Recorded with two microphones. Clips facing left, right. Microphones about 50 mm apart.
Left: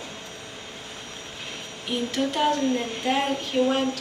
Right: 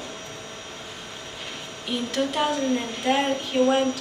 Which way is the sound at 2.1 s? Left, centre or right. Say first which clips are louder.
Left 1 dB; centre.